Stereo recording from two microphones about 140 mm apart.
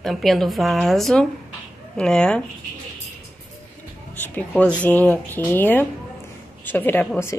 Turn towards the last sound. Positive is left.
turn(degrees=15)  # may be behind; listen again after turning